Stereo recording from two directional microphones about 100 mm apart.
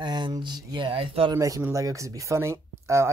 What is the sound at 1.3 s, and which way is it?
Speech, 35° right (ahead or behind).